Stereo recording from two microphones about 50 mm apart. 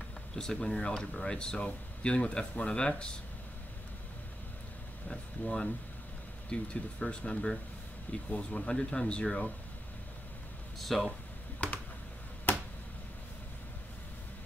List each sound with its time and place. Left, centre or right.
0.4 s speech: centre
5.0 s speech: centre
10.8 s speech: centre
11.6 s computer keyboard: left